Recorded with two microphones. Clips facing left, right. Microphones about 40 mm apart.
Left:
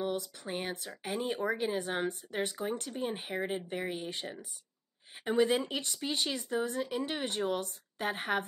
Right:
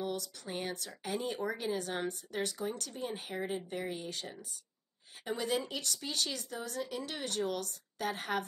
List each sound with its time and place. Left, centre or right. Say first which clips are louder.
0.0 s speech: left 3 dB; left